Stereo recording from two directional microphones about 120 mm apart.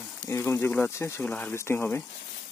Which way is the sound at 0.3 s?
20° left (ahead or behind).